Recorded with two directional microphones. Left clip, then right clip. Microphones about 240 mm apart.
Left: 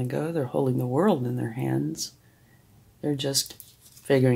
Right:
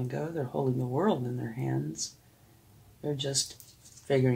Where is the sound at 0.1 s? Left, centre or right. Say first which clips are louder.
Left 7 dB; left.